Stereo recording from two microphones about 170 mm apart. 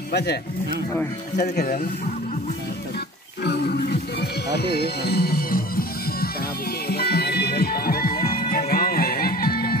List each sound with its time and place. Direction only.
0.1 s speech: 75° left (ahead or behind)
3.4 s music: 70° left (ahead or behind)